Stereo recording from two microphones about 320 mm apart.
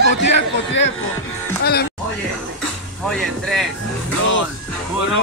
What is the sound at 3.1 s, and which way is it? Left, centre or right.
Speech, centre.